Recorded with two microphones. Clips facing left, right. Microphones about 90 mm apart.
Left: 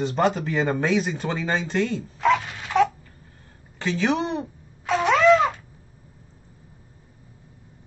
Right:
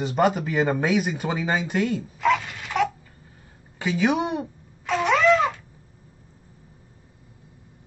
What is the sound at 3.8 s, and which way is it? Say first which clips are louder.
Speech: right 1 dB; 10° right (ahead or behind).